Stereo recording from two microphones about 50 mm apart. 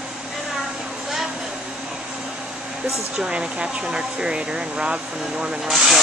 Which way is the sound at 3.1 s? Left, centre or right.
Centre.